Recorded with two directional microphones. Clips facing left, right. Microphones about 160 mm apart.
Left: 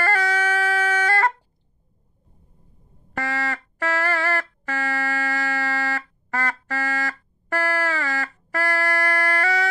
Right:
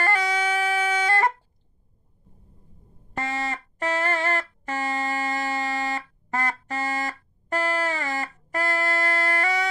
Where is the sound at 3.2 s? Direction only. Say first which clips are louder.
Left 2 dB; 20° right (ahead or behind).